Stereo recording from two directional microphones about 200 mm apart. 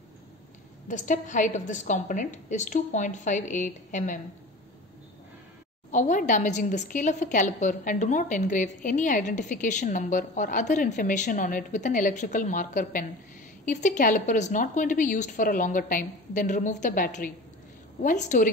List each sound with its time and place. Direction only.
0.8 s a woman's voice: 40° left (ahead or behind)
5.9 s a woman's voice: 40° left (ahead or behind)